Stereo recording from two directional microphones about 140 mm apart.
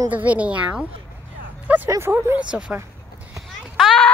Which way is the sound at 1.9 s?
20° right (ahead or behind).